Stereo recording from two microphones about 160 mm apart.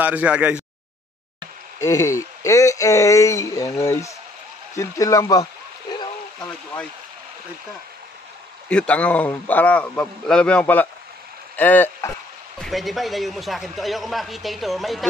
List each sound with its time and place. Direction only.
0.0 s speech: 10° right (ahead or behind)
1.8 s speech: 20° left (ahead or behind)
8.6 s a man's voice: 5° left (ahead or behind)
12.5 s a man's voice: centre (ahead or behind)